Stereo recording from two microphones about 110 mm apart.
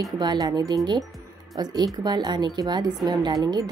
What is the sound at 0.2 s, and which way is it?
A woman's voice, 40° right (ahead or behind).